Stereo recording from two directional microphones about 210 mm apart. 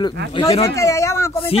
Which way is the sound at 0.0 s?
25° left (ahead or behind).